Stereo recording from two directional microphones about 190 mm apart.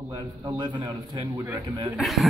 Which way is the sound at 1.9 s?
Centre (ahead or behind).